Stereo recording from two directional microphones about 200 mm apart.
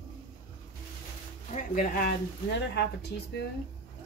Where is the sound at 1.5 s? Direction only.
45° left (ahead or behind).